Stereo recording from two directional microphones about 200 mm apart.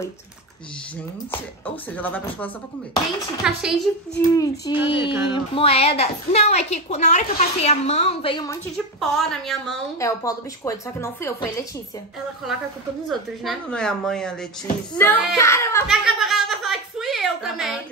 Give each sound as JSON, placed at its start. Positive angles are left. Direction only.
{"t": 2.0, "sound": "a woman's voice", "side_deg": 10}
{"t": 3.4, "sound": "a woman's voice", "side_deg": -5}
{"t": 4.3, "sound": "speech", "side_deg": 20}
{"t": 8.7, "sound": "a woman's voice", "side_deg": 0}
{"t": 9.9, "sound": "a woman's voice", "side_deg": 15}
{"t": 13.1, "sound": "a woman's voice", "side_deg": 0}
{"t": 15.9, "sound": "a sound", "side_deg": 0}